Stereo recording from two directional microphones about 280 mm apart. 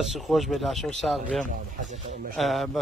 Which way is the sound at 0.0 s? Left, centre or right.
Centre.